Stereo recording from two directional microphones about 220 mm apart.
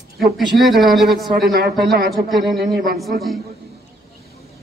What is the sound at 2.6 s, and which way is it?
Speech, 45° right (ahead or behind).